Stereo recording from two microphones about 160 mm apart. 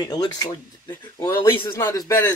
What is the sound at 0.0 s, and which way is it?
A man's voice, 25° left (ahead or behind).